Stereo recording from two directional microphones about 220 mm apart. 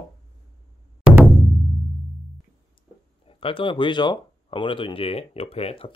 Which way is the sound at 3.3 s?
25° left (ahead or behind).